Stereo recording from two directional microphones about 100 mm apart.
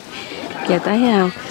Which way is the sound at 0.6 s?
30° left (ahead or behind).